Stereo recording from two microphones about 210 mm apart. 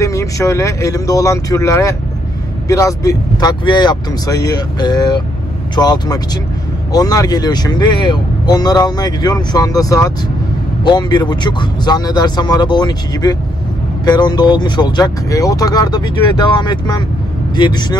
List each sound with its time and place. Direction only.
0.0 s speech: 15° left (ahead or behind)